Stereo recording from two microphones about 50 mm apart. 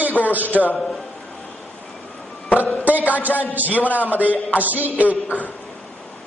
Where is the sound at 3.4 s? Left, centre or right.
Right.